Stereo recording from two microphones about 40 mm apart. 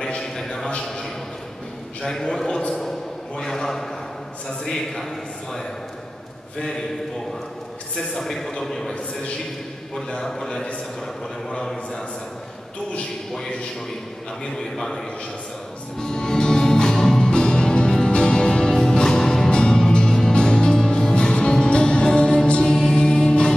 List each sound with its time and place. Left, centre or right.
0.2 s a sound: centre
2.0 s a man's voice: centre
7.9 s a man's voice: centre
9.9 s a man's voice: centre
14.6 s a man's voice: centre
16.0 s music: centre
17.2 s music: left